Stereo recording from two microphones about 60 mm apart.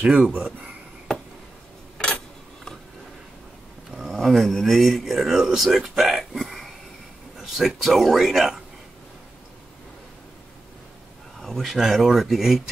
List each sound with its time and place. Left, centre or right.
0.0 s speech: centre
0.3 s speech: right
2.0 s a sound: centre
3.9 s a man's voice: centre
11.4 s speech: centre